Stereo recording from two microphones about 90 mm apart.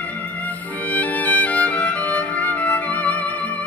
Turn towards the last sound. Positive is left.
turn(degrees=15)  # may be behind; listen again after turning